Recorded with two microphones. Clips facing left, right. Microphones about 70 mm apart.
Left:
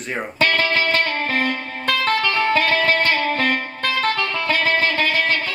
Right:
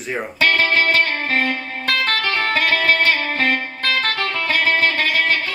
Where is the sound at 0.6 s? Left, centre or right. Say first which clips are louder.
Right 2 dB; right.